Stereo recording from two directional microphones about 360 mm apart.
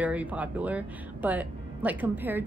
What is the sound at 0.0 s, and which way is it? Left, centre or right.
Speech, centre.